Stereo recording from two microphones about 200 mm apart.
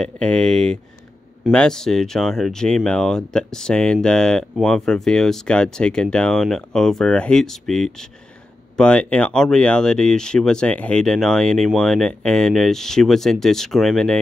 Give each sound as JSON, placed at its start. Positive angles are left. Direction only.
{"t": 0.0, "sound": "speech", "side_deg": 5}